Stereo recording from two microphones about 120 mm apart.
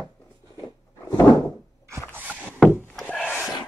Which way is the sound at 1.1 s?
30° left (ahead or behind).